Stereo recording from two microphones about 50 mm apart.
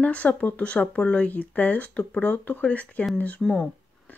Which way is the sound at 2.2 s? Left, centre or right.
Left.